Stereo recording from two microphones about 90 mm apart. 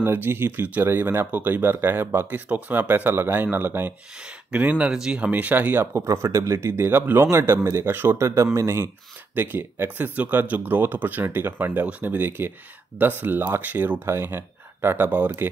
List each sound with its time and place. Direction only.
0.0 s speech: 25° right (ahead or behind)
5.9 s speech: 35° right (ahead or behind)